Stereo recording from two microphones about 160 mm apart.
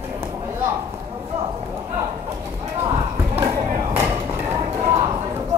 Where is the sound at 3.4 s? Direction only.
20° right (ahead or behind).